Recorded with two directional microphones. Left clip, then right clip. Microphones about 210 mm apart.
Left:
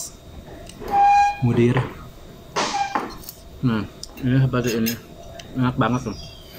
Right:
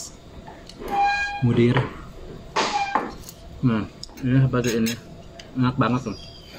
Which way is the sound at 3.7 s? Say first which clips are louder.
Even; 5° left (ahead or behind).